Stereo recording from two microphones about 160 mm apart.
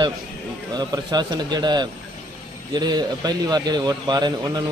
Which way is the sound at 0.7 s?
25° right (ahead or behind).